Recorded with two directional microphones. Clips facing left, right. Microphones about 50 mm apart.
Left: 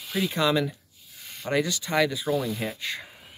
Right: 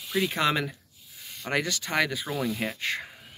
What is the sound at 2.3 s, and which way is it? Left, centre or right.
Speech, centre.